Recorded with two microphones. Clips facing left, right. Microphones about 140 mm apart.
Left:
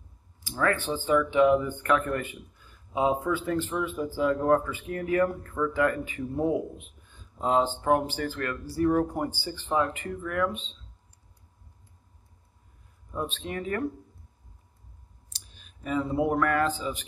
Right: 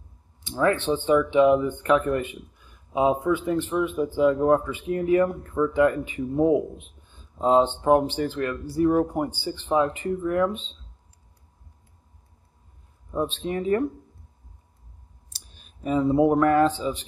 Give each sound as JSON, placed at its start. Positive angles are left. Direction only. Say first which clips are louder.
{"t": 0.4, "sound": "speech", "louder": "right 4 dB", "side_deg": -25}
{"t": 13.1, "sound": "speech", "louder": "right 6 dB", "side_deg": -30}
{"t": 15.5, "sound": "a man's voice", "louder": "right 5 dB", "side_deg": -35}